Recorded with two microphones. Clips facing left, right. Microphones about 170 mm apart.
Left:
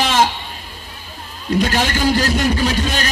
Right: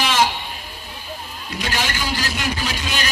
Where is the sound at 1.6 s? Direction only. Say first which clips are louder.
Left 6 dB; 45° left (ahead or behind).